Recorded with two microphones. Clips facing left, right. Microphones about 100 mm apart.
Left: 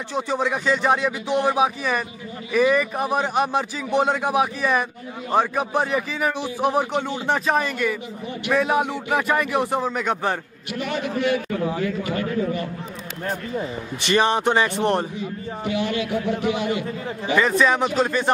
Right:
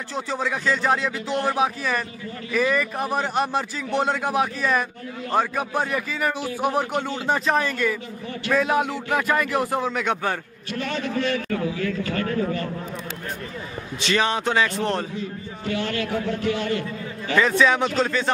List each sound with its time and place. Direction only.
0.1 s a man's voice: 10° left (ahead or behind)
9.6 s speech: centre (ahead or behind)
10.2 s a man's voice: 15° left (ahead or behind)
14.4 s a man's voice: 20° left (ahead or behind)
17.3 s a man's voice: 5° left (ahead or behind)